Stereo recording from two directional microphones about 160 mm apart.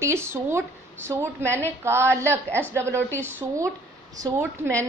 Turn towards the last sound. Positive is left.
turn(degrees=-20)  # may be behind; listen again after turning